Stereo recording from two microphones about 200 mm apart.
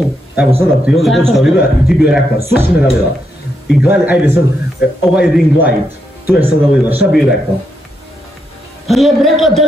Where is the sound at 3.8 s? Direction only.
5° right (ahead or behind).